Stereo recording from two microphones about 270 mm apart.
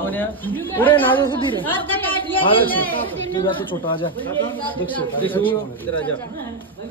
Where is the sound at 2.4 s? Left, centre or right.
Centre.